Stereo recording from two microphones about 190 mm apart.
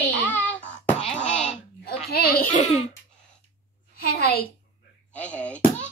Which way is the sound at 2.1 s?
50° left (ahead or behind).